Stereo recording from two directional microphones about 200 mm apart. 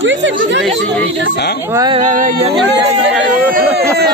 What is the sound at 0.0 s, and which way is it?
Speech, 65° right (ahead or behind).